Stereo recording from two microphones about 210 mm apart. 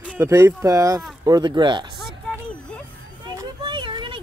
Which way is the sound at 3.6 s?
25° right (ahead or behind).